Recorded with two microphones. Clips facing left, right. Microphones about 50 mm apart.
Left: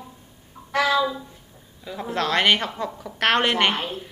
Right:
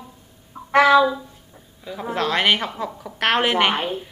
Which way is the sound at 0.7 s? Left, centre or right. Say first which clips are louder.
Right 7 dB; right.